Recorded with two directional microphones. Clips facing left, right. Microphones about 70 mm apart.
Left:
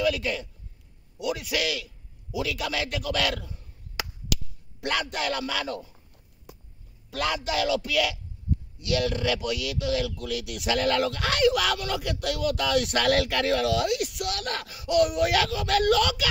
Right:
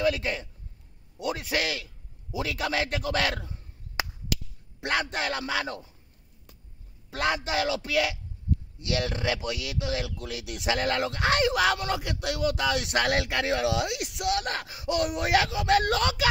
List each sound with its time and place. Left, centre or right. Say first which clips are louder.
0.0 s a man's voice: left 1 dB; right
6.5 s a sound: left 9 dB; centre
7.1 s a man's voice: even; right